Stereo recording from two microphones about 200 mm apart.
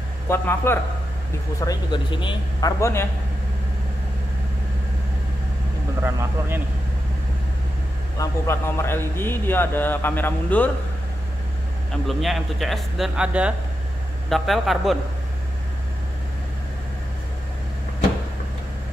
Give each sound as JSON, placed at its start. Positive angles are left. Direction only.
{"t": 0.3, "sound": "a man's voice", "side_deg": 10}
{"t": 8.2, "sound": "a man's voice", "side_deg": 15}
{"t": 11.9, "sound": "speech", "side_deg": 0}